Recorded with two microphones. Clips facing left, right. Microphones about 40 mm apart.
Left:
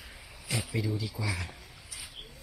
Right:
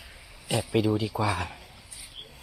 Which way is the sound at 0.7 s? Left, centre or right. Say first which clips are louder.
Right 11 dB; right.